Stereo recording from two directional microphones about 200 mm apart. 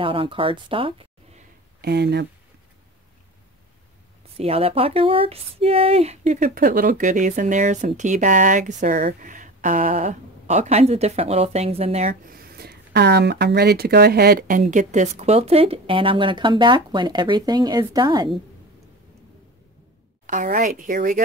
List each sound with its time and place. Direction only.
0.0 s speech: 25° right (ahead or behind)
1.8 s speech: 55° right (ahead or behind)
4.4 s speech: 30° right (ahead or behind)
12.4 s speech: 50° right (ahead or behind)
14.6 s speech: 35° right (ahead or behind); by 18.3 s 20° right (ahead or behind)
20.2 s speech: 40° right (ahead or behind)